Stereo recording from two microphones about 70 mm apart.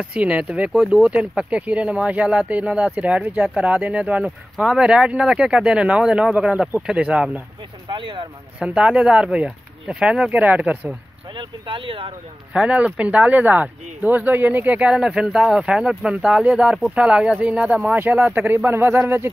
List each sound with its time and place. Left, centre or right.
0.0 s speech: centre
8.5 s speech: centre
10.4 s speech: right
12.5 s speech: centre
18.3 s a man's voice: right